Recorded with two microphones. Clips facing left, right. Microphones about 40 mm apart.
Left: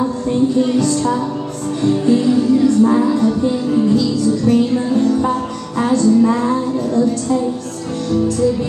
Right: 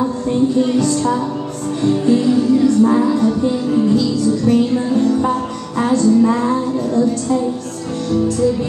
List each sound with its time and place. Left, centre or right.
0.7 s a woman's voice: right
1.9 s music: centre
2.2 s music: centre
4.5 s music: centre
6.9 s a woman's voice: centre